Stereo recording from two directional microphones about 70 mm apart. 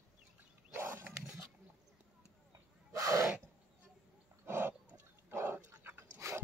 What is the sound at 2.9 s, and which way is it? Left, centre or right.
Gasp, right.